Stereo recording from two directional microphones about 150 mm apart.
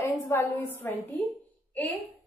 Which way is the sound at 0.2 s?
20° left (ahead or behind).